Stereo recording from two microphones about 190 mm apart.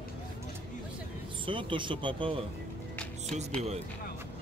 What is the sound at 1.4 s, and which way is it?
Speech, 25° right (ahead or behind).